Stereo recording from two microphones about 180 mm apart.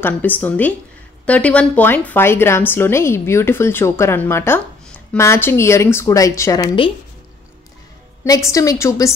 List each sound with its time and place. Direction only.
0.0 s a woman's voice: 10° left (ahead or behind)
8.2 s a woman's voice: 15° left (ahead or behind)